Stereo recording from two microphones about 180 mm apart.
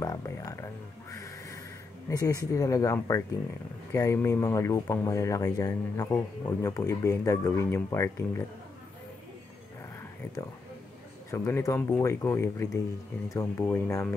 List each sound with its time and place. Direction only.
0.0 s speech: 20° left (ahead or behind)
1.1 s music: 20° left (ahead or behind)
2.0 s speech: 20° left (ahead or behind)
11.2 s speech: 15° left (ahead or behind)